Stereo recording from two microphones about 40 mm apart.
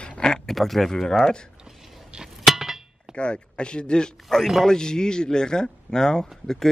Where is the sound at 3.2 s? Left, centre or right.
Left.